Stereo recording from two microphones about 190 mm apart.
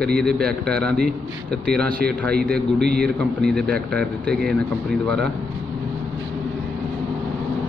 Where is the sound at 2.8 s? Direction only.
55° right (ahead or behind).